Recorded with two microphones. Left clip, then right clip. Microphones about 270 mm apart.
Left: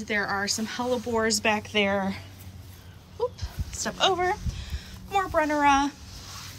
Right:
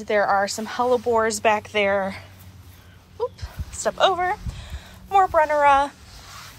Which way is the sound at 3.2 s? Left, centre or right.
Centre.